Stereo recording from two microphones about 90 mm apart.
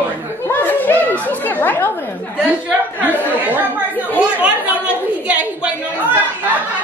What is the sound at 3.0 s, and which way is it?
A woman's voice, 20° right (ahead or behind).